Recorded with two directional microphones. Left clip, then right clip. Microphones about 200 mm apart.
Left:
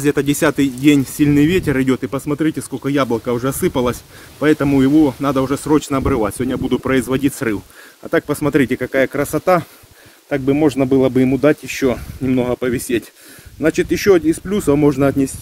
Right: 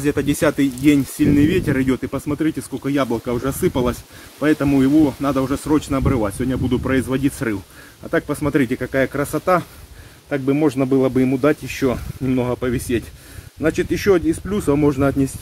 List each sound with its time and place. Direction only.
0.0 s speech: 50° left (ahead or behind)